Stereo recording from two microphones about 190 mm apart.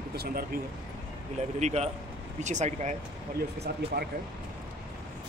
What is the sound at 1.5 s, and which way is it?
Speech, 35° right (ahead or behind).